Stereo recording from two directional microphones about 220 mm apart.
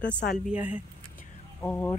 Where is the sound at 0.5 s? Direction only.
5° right (ahead or behind).